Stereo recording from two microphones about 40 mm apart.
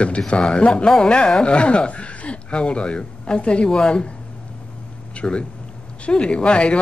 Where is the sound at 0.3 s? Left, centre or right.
Left.